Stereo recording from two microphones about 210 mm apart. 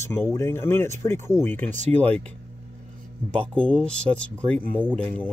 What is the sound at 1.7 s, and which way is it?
Speech, 30° right (ahead or behind).